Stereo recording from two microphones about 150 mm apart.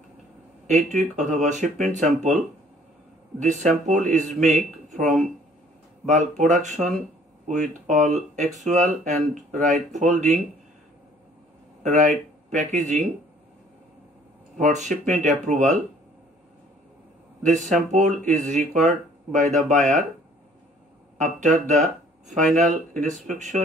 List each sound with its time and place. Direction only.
0.7 s speech: 50° right (ahead or behind)
4.8 s a sound: 55° right (ahead or behind)
6.0 s speech: 50° right (ahead or behind)
11.8 s speech: 55° right (ahead or behind)
14.6 s speech: 55° right (ahead or behind)
17.4 s speech: 55° right (ahead or behind)
21.2 s speech: 55° right (ahead or behind)